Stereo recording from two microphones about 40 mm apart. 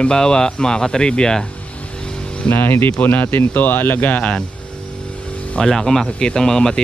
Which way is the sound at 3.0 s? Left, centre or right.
Left.